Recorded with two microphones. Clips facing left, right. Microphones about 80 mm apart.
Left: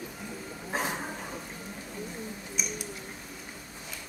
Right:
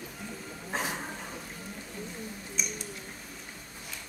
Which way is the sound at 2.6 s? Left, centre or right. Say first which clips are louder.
Left 1 dB; centre.